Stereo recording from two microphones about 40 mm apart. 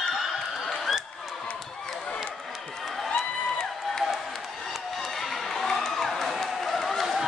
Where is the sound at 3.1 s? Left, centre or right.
Centre.